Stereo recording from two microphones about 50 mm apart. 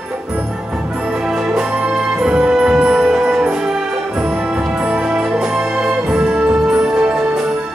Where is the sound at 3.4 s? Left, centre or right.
Centre.